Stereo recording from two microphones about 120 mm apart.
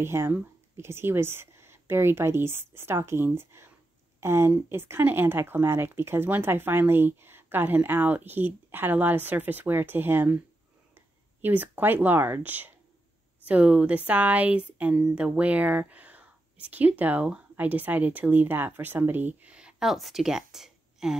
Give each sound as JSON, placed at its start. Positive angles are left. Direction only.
{"t": 0.0, "sound": "speech", "side_deg": -20}